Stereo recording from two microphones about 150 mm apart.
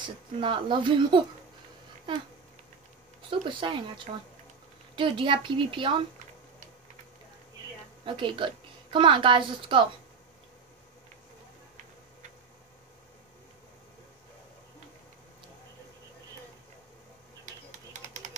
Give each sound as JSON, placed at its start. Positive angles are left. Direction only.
{"t": 0.0, "sound": "speech", "side_deg": -35}
{"t": 3.2, "sound": "speech", "side_deg": -35}
{"t": 8.0, "sound": "speech", "side_deg": -35}
{"t": 17.6, "sound": "typing", "side_deg": -50}